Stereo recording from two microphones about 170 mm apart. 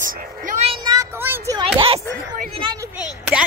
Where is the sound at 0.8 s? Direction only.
20° right (ahead or behind).